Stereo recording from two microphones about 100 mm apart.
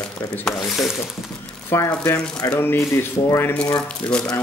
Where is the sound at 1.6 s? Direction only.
30° left (ahead or behind).